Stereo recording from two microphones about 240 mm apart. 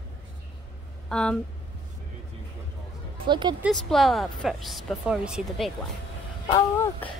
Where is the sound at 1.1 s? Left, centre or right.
Centre.